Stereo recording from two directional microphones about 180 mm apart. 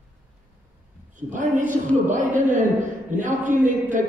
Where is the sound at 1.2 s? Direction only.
45° right (ahead or behind).